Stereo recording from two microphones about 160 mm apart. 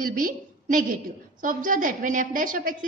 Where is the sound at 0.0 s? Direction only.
60° right (ahead or behind).